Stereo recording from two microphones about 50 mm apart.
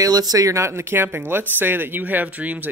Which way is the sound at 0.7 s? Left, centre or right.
Right.